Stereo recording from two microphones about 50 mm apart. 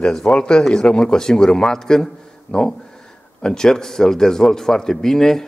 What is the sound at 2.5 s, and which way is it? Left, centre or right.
Speech, left.